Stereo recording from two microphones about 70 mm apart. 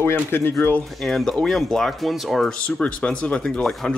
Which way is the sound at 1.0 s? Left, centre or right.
Centre.